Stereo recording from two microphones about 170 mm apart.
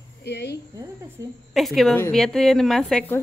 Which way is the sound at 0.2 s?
75° left (ahead or behind).